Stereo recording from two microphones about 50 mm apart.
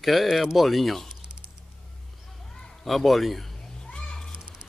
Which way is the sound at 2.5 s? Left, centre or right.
Centre.